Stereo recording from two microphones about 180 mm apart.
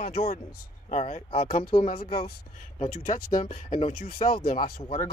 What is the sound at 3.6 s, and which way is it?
Speech, 30° left (ahead or behind).